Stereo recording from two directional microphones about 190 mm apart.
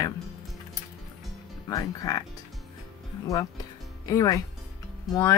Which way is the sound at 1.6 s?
20° left (ahead or behind).